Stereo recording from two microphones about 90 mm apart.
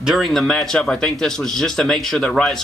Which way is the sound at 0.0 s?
Centre (ahead or behind).